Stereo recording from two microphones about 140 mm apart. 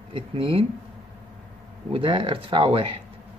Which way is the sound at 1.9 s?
40° right (ahead or behind).